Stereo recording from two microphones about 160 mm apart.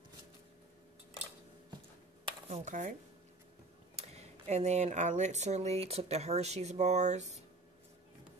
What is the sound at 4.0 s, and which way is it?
Speech, 40° right (ahead or behind).